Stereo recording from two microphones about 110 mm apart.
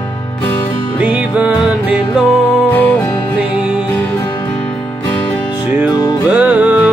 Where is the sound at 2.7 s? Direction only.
15° left (ahead or behind).